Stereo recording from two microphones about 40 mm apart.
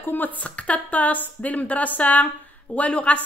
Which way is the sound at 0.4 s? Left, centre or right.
Left.